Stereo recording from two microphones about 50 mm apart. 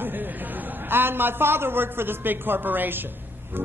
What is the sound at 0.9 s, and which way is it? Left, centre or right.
A woman's voice, right.